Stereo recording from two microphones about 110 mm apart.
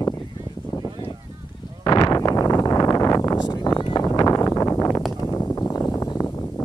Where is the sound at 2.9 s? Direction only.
35° left (ahead or behind).